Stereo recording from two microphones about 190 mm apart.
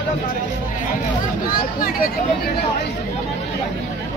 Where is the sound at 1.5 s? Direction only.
50° left (ahead or behind).